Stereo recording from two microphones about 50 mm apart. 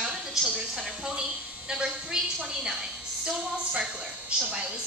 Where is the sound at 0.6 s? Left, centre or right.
Centre.